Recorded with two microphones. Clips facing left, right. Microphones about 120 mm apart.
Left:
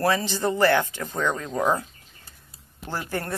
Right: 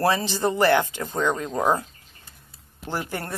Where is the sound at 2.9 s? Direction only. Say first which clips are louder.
Even; 15° right (ahead or behind).